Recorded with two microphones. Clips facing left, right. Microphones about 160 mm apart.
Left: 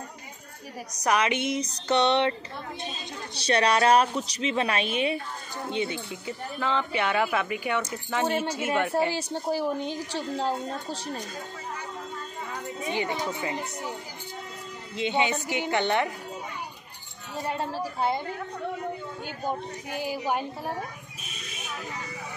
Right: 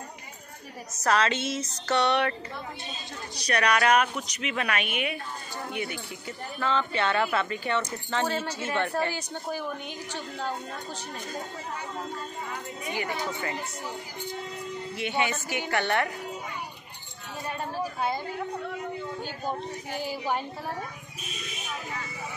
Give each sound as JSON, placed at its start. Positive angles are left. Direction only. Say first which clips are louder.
{"t": 1.0, "sound": "a woman's voice", "louder": "even", "side_deg": 15}
{"t": 3.3, "sound": "a woman's voice", "louder": "left 2 dB", "side_deg": 25}
{"t": 9.1, "sound": "a woman's voice", "louder": "left 5 dB", "side_deg": 30}
{"t": 12.8, "sound": "a woman's voice", "louder": "left 3 dB", "side_deg": 20}
{"t": 15.0, "sound": "a woman's voice", "louder": "left 4 dB", "side_deg": 20}
{"t": 17.4, "sound": "a woman's voice", "louder": "left 2 dB", "side_deg": 25}
{"t": 19.2, "sound": "speech", "louder": "left 5 dB", "side_deg": 15}